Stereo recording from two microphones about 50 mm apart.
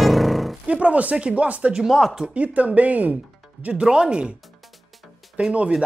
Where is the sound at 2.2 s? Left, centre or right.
Right.